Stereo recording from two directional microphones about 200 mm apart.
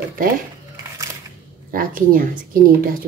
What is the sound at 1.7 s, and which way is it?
A woman's voice, 45° right (ahead or behind).